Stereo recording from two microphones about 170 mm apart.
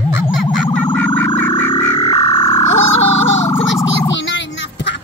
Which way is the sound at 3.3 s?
40° left (ahead or behind).